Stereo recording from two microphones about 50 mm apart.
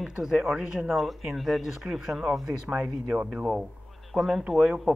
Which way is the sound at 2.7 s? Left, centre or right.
Right.